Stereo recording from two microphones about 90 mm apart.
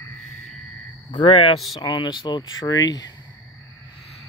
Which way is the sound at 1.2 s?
90° left.